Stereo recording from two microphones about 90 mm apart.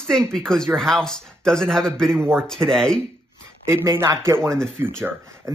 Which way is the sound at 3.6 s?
30° right (ahead or behind).